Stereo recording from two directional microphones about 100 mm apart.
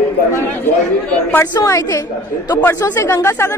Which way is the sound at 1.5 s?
35° left (ahead or behind).